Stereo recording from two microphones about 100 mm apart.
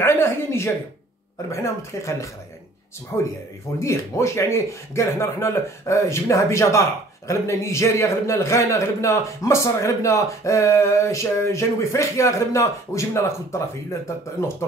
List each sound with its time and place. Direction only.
0.0 s a sound: 25° left (ahead or behind)
1.5 s speech: 30° left (ahead or behind)
3.8 s speech: 30° left (ahead or behind)